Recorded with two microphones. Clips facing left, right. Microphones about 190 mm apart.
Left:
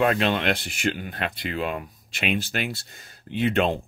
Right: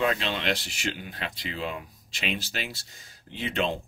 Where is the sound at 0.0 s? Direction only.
60° left (ahead or behind).